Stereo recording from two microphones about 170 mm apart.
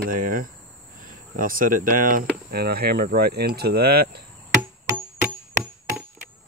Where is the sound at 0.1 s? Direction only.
55° right (ahead or behind).